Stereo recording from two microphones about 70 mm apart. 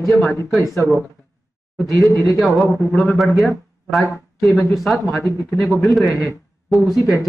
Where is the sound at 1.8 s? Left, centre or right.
Left.